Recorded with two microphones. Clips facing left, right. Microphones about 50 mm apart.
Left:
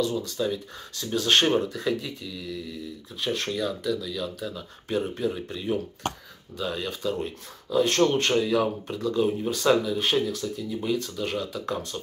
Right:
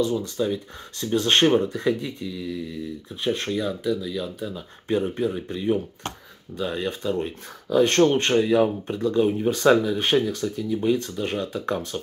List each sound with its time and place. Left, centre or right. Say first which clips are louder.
0.0 s speech: right 3 dB; right
3.3 s speech: right 2 dB; right
7.7 s speech: right 4 dB; right
8.0 s speech: right 3 dB; right